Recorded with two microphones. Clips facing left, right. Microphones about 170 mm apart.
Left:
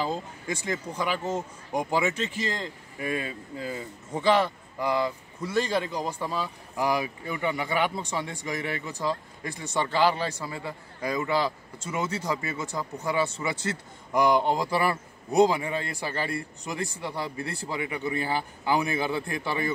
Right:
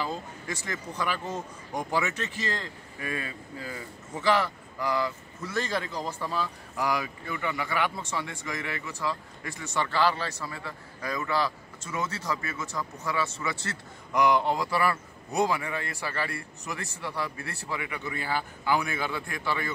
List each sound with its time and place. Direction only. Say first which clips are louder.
0.0 s a man's voice: left 3 dB; 20° left (ahead or behind)
2.3 s a man's voice: left 2 dB; 15° left (ahead or behind)
9.0 s speech: left 3 dB; 30° left (ahead or behind)
9.6 s a man's voice: left 2 dB; 20° left (ahead or behind)